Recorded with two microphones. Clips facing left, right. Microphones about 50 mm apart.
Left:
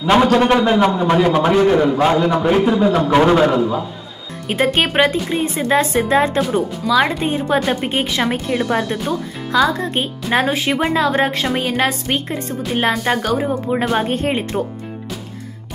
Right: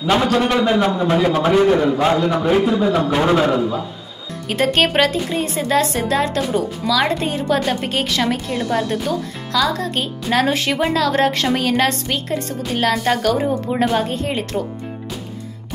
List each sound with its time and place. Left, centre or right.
0.2 s a man's voice: centre; by 10.4 s left
10.4 s a man's voice: centre
10.7 s a man's voice: centre
14.0 s speech: left